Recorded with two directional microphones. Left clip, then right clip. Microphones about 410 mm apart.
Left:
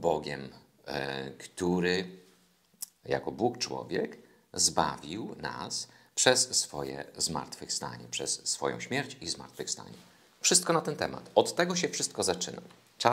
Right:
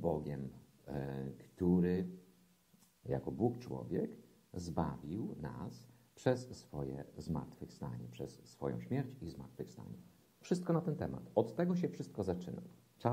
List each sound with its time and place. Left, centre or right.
0.2 s speech: centre
3.1 s speech: centre